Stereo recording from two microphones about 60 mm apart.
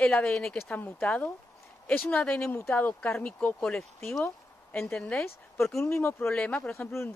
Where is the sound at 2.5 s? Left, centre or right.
Left.